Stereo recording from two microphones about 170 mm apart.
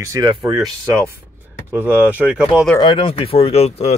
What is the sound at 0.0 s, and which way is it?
Speech, 20° right (ahead or behind).